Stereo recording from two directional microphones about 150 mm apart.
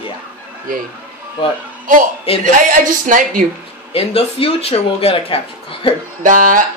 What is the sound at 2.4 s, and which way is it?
Speech, 60° right (ahead or behind).